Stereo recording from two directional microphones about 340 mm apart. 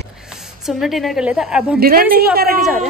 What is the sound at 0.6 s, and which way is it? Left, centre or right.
A woman's voice, centre.